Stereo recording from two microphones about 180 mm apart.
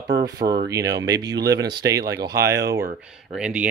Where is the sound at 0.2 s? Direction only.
25° right (ahead or behind).